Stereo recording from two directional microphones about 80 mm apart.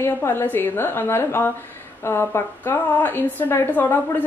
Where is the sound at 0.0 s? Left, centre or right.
Left.